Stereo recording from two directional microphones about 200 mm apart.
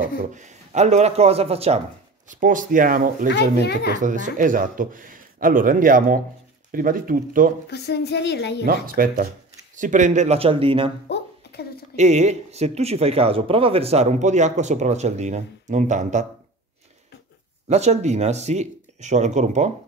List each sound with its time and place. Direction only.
0.2 s speech: 40° right (ahead or behind)
2.2 s speech: 40° right (ahead or behind)
7.6 s a woman's voice: 55° left (ahead or behind)
8.6 s speech: 45° right (ahead or behind); by 10.9 s 25° right (ahead or behind)
11.1 s a sound: 55° left (ahead or behind)
12.0 s speech: 35° right (ahead or behind)
17.6 s speech: 35° right (ahead or behind)